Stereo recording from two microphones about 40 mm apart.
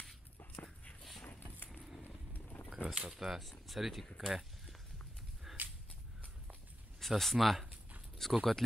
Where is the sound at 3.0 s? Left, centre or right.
Centre.